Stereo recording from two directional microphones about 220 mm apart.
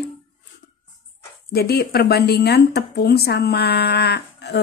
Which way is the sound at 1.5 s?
45° left (ahead or behind).